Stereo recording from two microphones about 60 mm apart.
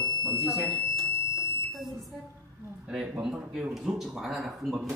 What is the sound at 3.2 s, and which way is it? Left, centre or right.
Speech, centre.